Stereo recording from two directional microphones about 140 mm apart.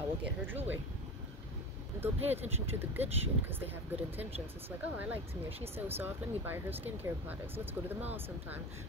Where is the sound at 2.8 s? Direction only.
15° right (ahead or behind).